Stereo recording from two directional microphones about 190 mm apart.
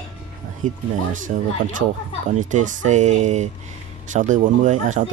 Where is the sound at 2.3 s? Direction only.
40° right (ahead or behind).